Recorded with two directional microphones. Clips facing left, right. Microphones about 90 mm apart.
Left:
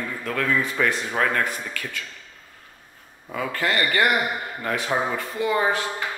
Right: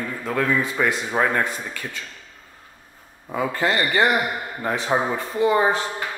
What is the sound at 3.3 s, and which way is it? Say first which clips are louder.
Speech: right 3 dB; 20° right (ahead or behind).